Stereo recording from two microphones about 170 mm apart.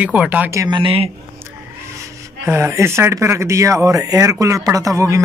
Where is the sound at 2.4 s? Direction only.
15° right (ahead or behind).